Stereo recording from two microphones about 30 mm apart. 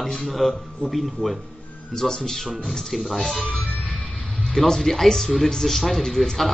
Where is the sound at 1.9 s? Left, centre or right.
Centre.